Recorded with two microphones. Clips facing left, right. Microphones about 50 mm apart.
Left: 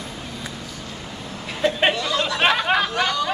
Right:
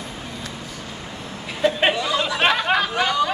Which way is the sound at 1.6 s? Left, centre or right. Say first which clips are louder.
Right 1 dB; centre.